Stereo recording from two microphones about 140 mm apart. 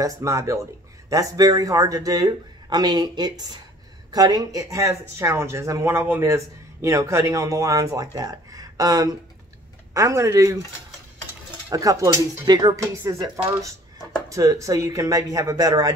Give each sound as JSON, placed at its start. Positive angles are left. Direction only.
{"t": 0.0, "sound": "speech", "side_deg": -20}
{"t": 11.7, "sound": "speech", "side_deg": -25}